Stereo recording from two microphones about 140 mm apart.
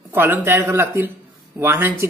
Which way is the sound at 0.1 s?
15° right (ahead or behind).